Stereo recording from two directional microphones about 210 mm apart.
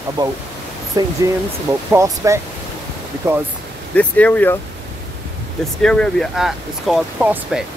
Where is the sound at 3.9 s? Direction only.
5° left (ahead or behind).